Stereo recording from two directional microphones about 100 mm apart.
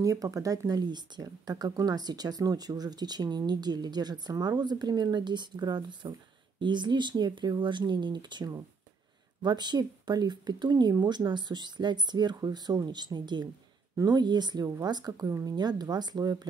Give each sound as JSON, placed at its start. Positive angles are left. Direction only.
{"t": 0.0, "sound": "speech", "side_deg": -35}